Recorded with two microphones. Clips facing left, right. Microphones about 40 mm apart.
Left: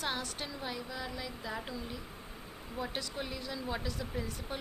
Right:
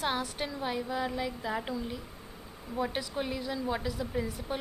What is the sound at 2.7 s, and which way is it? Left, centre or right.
A woman's voice, centre.